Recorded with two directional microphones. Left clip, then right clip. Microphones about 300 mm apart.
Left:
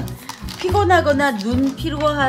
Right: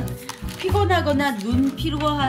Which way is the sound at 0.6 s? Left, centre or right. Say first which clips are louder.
Left 5 dB; left.